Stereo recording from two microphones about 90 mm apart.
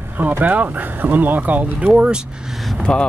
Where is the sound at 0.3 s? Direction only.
20° right (ahead or behind).